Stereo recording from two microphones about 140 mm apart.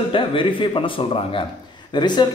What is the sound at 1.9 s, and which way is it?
Speech, 30° left (ahead or behind).